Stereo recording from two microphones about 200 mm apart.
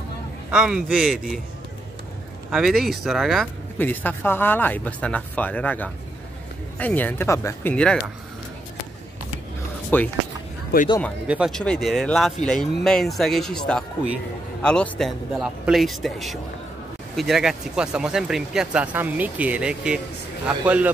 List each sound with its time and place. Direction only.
0.5 s speech: 5° right (ahead or behind)
2.5 s speech: centre (ahead or behind)
9.9 s speech: 10° left (ahead or behind)
10.7 s speech: 50° left (ahead or behind)
11.2 s a man's voice: 5° right (ahead or behind)